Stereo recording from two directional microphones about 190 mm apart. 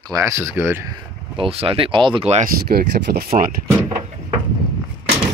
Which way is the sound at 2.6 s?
55° right (ahead or behind).